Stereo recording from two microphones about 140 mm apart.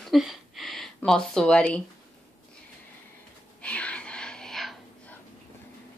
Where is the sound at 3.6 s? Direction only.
10° left (ahead or behind).